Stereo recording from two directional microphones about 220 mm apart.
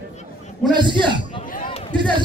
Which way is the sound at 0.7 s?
20° right (ahead or behind).